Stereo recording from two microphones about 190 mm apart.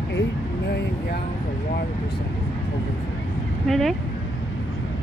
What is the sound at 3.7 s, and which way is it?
Speech, centre (ahead or behind).